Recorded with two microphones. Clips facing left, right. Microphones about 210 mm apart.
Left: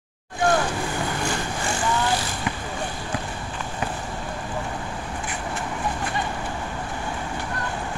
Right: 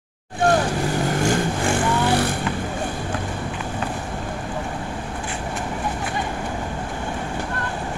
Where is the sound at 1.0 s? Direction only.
50° right (ahead or behind).